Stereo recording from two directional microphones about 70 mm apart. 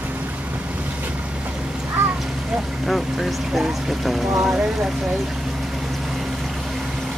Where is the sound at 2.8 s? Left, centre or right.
Centre.